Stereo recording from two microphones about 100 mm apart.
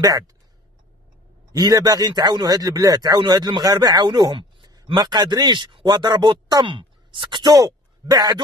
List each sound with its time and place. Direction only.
1.5 s a man's voice: 45° right (ahead or behind)
6.6 s speech: 55° right (ahead or behind)
7.5 s speech: 40° right (ahead or behind)